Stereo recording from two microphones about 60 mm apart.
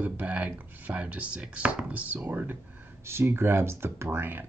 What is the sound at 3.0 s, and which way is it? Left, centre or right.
Speech, right.